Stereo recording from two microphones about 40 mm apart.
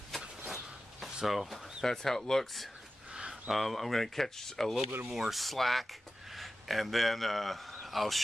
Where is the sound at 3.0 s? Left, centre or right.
Centre.